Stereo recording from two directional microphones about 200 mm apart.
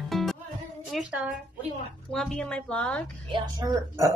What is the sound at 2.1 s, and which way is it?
Speech, 5° left (ahead or behind).